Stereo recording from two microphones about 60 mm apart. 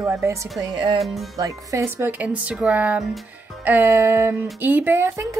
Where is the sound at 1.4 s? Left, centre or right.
Right.